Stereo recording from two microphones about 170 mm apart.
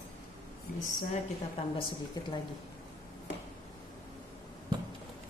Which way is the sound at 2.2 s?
20° left (ahead or behind).